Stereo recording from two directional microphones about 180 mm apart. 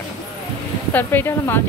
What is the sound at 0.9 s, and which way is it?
Speech, 10° left (ahead or behind).